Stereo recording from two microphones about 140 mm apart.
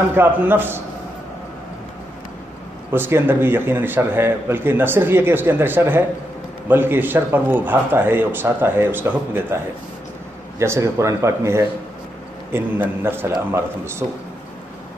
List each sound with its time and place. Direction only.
0.0 s a man's voice: 15° right (ahead or behind)
2.9 s a man's voice: 15° right (ahead or behind)
10.6 s a man's voice: 20° right (ahead or behind)